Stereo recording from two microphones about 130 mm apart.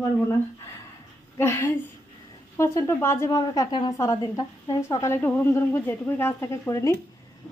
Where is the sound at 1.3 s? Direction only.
20° left (ahead or behind).